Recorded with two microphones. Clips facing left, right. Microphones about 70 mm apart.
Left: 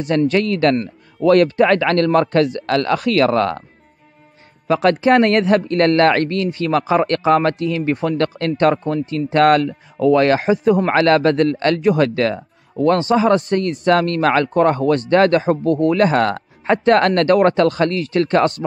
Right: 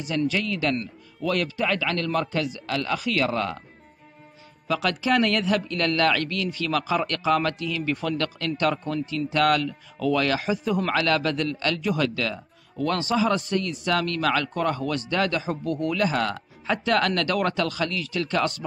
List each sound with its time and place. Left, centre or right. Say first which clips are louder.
0.3 s a man's voice: left 10 dB; left
4.6 s a man's voice: left 10 dB; left